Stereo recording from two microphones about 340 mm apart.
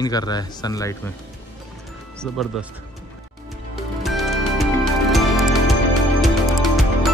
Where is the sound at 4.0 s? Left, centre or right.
Centre.